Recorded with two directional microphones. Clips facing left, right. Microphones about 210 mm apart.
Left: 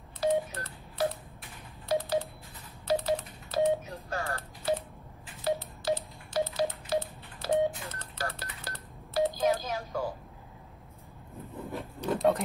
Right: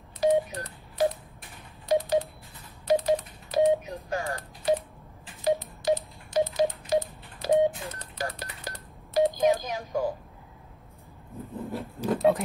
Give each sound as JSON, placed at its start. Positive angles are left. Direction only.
{"t": 0.2, "sound": "telephone dialing", "side_deg": -15}
{"t": 11.3, "sound": "vehicle", "side_deg": 0}